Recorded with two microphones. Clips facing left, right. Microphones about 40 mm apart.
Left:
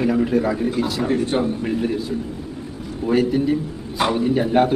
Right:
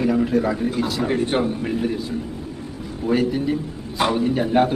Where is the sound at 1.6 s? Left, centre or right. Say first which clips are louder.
Left 1 dB; centre.